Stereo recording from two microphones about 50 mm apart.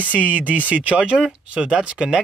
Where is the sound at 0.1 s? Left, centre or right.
Right.